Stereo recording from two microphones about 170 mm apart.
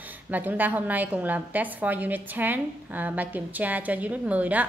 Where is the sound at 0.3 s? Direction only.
10° right (ahead or behind).